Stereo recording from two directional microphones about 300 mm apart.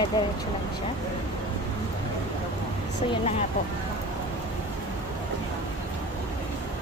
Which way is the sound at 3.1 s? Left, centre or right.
Left.